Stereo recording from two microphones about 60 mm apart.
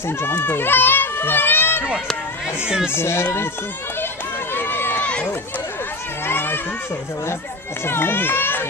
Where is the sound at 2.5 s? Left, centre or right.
Centre.